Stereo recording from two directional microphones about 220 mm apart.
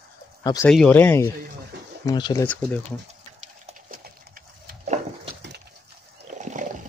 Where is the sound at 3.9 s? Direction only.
40° right (ahead or behind).